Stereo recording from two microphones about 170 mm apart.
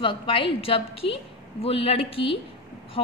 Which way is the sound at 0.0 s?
30° left (ahead or behind).